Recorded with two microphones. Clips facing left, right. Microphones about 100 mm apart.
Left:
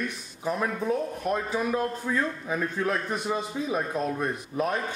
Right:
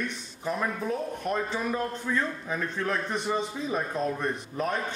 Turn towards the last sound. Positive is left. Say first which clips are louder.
# left 2 dB
turn(degrees=5)  # may be behind; listen again after turning